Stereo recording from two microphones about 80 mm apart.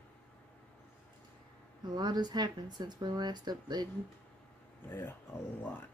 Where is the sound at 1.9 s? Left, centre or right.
Right.